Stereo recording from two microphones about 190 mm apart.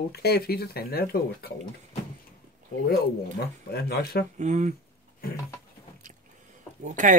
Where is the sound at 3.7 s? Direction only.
55° left (ahead or behind).